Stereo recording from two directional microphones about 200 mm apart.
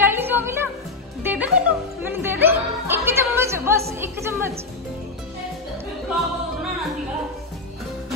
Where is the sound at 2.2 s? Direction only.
10° right (ahead or behind).